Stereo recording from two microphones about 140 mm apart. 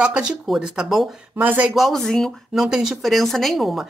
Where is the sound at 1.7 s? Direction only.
Centre (ahead or behind).